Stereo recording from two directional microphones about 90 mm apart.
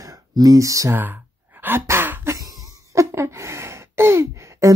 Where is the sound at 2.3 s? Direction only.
40° right (ahead or behind).